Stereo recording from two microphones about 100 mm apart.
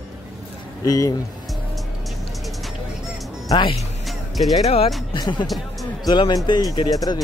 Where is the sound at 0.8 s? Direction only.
35° left (ahead or behind).